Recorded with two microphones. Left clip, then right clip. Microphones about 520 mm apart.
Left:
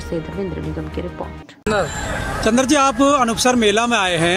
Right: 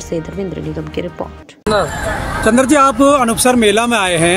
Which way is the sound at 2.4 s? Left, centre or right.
Left.